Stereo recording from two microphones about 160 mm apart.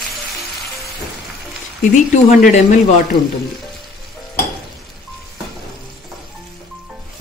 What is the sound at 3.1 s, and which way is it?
Speech, 30° left (ahead or behind).